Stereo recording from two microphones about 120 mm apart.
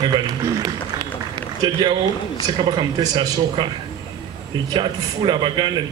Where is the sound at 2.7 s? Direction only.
40° right (ahead or behind).